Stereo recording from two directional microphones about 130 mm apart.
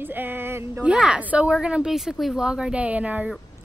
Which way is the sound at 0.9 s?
5° right (ahead or behind).